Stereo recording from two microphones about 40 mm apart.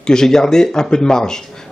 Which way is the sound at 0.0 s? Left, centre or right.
Centre.